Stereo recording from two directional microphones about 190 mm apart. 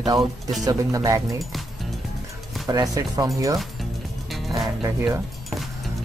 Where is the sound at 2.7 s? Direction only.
20° right (ahead or behind).